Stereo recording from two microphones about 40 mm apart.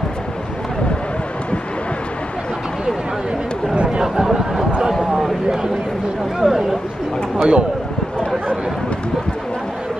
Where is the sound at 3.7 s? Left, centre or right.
Right.